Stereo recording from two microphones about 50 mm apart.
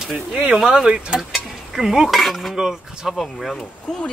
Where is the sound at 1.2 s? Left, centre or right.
Centre.